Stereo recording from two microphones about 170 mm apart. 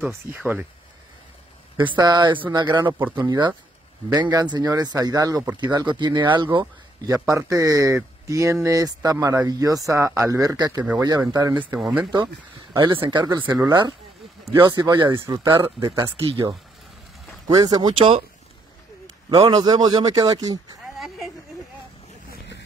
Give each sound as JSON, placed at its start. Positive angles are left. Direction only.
{"t": 0.4, "sound": "speech", "side_deg": -10}
{"t": 1.8, "sound": "speech", "side_deg": -25}
{"t": 5.7, "sound": "speech", "side_deg": -25}
{"t": 11.5, "sound": "speech", "side_deg": -10}
{"t": 12.7, "sound": "speech", "side_deg": -30}
{"t": 14.6, "sound": "speech", "side_deg": -25}
{"t": 17.5, "sound": "speech", "side_deg": -25}
{"t": 19.3, "sound": "speech", "side_deg": -25}